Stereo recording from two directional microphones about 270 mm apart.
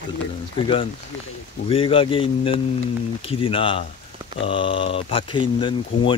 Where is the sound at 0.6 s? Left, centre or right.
Centre.